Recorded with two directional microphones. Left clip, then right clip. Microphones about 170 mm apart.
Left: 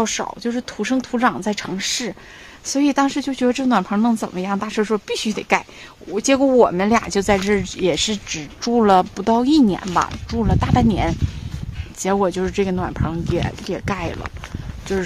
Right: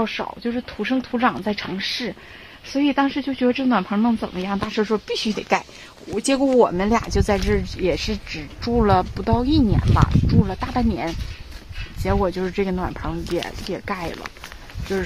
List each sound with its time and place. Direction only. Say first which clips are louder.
0.0 s speech: left 3 dB; 25° left (ahead or behind)